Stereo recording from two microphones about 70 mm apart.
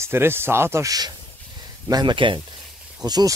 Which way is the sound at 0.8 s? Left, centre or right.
Right.